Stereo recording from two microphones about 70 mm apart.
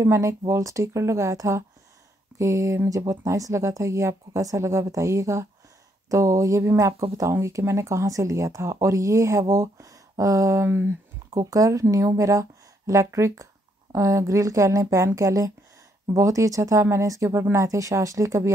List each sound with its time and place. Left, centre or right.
0.0 s speech: right
10.7 s speech: right
11.2 s speech: right